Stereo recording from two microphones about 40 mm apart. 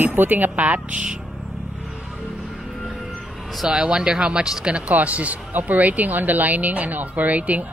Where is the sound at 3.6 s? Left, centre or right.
Right.